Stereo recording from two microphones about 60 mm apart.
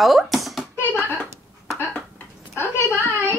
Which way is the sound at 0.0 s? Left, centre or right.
Centre.